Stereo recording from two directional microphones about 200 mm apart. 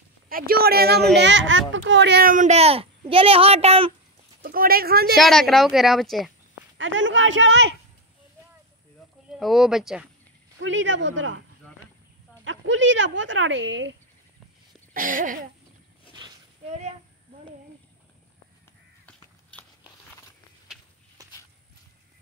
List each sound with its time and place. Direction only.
0.3 s speech: 45° right (ahead or behind)
1.1 s a child's voice: 60° right (ahead or behind); by 3.9 s 30° right (ahead or behind)
4.4 s speech: 45° right (ahead or behind)
5.1 s a woman's voice: centre (ahead or behind)
6.8 s speech: 70° right (ahead or behind)
9.4 s a woman's voice: centre (ahead or behind)
10.6 s speech: 70° right (ahead or behind)
12.4 s speech: 65° right (ahead or behind)
15.0 s speech: 40° right (ahead or behind)
21.2 s walk: 15° right (ahead or behind)